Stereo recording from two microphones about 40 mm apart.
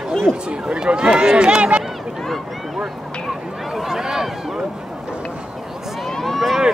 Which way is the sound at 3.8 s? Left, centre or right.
Centre.